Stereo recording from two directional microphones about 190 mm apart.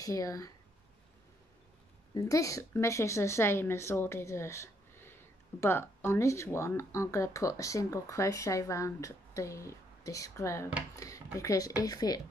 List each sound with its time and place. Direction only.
0.0 s speech: 15° left (ahead or behind)
2.1 s speech: 15° left (ahead or behind)
11.0 s a sound: 15° left (ahead or behind)
11.3 s speech: 15° left (ahead or behind)